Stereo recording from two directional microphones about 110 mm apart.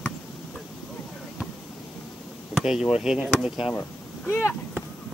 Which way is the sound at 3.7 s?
20° left (ahead or behind).